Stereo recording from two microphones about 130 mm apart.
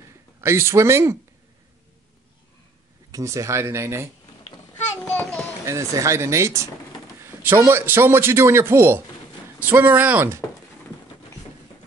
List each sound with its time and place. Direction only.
0.4 s a man's voice: 20° right (ahead or behind)
3.1 s a man's voice: 25° right (ahead or behind)
4.9 s a sound: 15° left (ahead or behind)
5.7 s a man's voice: 25° right (ahead or behind)